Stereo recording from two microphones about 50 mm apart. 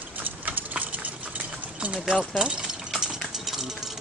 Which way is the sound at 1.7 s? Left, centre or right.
Right.